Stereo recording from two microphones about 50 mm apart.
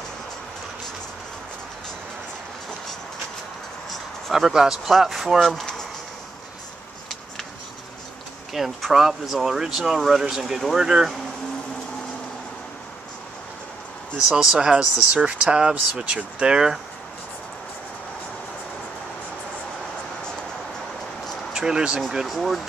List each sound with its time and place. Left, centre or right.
3.9 s speech: centre
5.4 s speech: centre
8.5 s speech: centre
14.1 s speech: centre
21.5 s speech: centre
22.1 s speech: centre